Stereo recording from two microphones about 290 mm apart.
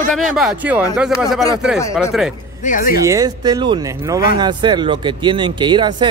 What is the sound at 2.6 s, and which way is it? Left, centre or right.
Speech, left.